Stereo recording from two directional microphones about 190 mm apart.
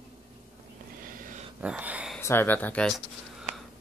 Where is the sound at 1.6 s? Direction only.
5° right (ahead or behind).